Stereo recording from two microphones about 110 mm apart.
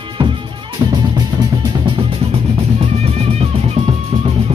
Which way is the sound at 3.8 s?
45° right (ahead or behind).